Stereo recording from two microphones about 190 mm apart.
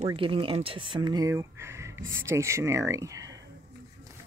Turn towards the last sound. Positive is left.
turn(degrees=-15)  # may be behind; listen again after turning